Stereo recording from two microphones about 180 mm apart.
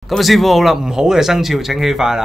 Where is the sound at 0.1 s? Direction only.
Centre (ahead or behind).